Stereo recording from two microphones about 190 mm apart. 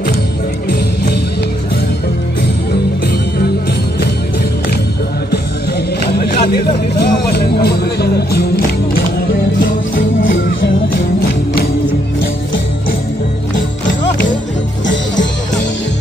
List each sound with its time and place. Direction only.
6.1 s music: 55° left (ahead or behind)